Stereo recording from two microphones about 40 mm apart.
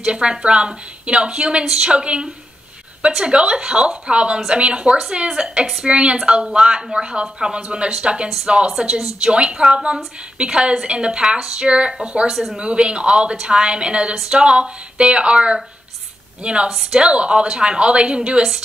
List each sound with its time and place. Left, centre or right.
0.0 s a woman's voice: right
3.3 s a woman's voice: right
9.3 s a woman's voice: right
9.6 s speech: centre
10.3 s a woman's voice: right
11.2 s speech: centre
11.6 s a woman's voice: right